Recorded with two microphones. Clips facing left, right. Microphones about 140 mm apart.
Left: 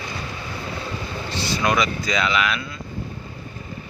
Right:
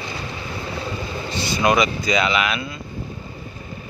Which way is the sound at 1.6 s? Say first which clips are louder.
Right 4 dB; 15° right (ahead or behind).